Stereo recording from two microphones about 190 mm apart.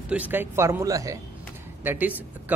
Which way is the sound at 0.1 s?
10° right (ahead or behind).